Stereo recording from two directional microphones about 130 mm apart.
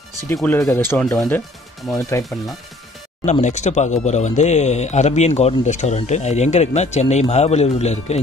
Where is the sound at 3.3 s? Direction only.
65° left (ahead or behind).